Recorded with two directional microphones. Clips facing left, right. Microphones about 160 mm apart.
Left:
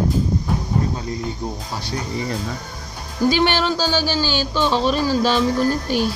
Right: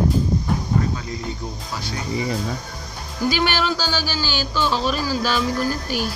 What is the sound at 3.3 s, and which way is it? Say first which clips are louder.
Speech: left 3 dB; 25° left (ahead or behind).